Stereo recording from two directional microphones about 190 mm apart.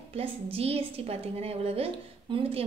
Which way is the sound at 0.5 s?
30° right (ahead or behind).